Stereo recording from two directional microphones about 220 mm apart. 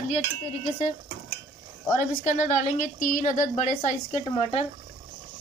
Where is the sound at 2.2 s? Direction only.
35° left (ahead or behind).